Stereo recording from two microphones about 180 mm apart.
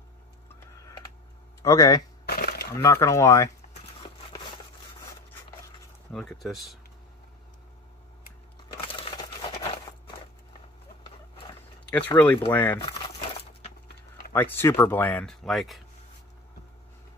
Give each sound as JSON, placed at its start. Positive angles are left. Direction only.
{"t": 1.6, "sound": "speech", "side_deg": 20}
{"t": 2.2, "sound": "a sound", "side_deg": 60}
{"t": 2.8, "sound": "speech", "side_deg": 15}
{"t": 6.1, "sound": "speech", "side_deg": 5}
{"t": 11.9, "sound": "speech", "side_deg": 10}
{"t": 14.3, "sound": "speech", "side_deg": 10}